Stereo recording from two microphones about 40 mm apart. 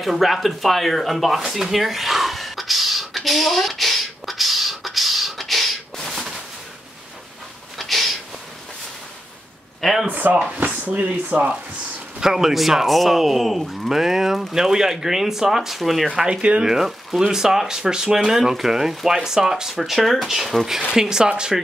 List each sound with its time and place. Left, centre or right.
0.0 s speech: centre
1.6 s beatboxing: centre
7.7 s a sound: centre
10.0 s speech: right
12.2 s speech: centre
16.3 s speech: right
16.6 s speech: centre
19.8 s speech: centre
20.9 s speech: centre